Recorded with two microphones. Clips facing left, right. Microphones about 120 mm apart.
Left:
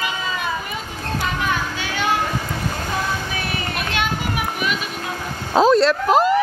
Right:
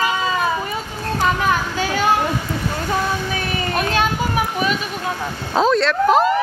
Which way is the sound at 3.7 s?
40° right (ahead or behind).